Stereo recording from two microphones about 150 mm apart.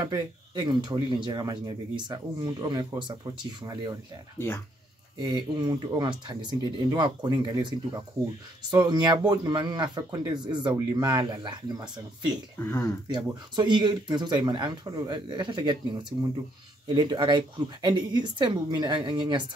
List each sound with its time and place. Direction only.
0.0 s speech: 25° right (ahead or behind)
5.2 s speech: 30° right (ahead or behind)
12.5 s speech: 15° left (ahead or behind)
13.1 s speech: 30° right (ahead or behind)